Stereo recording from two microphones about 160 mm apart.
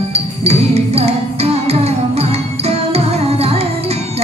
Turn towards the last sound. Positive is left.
turn(degrees=-40)  # may be behind; listen again after turning